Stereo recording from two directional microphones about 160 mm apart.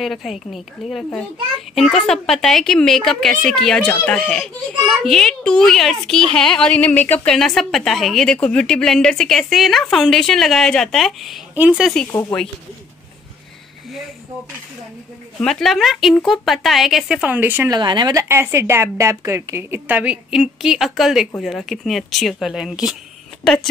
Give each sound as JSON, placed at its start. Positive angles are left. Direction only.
{"t": 0.0, "sound": "a child's voice", "side_deg": 0}
{"t": 12.1, "sound": "speech", "side_deg": 20}
{"t": 15.4, "sound": "a child's voice", "side_deg": 0}
{"t": 17.6, "sound": "speech", "side_deg": -30}
{"t": 18.3, "sound": "a woman's voice", "side_deg": -15}